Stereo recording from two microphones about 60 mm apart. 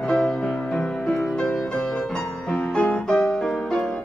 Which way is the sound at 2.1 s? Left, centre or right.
Centre.